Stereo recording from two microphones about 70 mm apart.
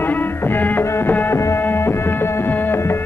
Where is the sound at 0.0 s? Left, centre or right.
Left.